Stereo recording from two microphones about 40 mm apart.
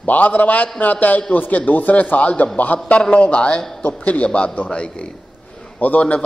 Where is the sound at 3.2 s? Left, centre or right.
Left.